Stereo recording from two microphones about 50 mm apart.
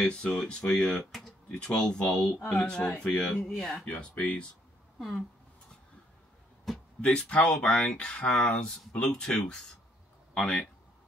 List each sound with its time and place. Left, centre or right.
0.0 s speech: centre
3.7 s speech: left
6.7 s a sound: centre
7.0 s speech: left